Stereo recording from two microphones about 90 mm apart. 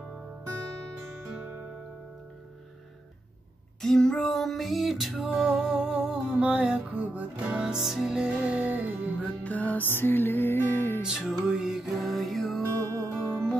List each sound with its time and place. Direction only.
3.8 s music: 5° left (ahead or behind); by 9.3 s 15° right (ahead or behind)
9.4 s music: 20° left (ahead or behind)
11.1 s music: 5° right (ahead or behind); by 13.6 s 10° left (ahead or behind)